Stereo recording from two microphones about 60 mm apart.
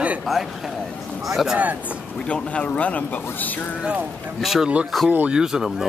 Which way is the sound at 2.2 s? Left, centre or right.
Centre.